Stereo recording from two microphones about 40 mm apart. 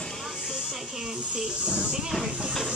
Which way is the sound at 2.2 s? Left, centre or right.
Right.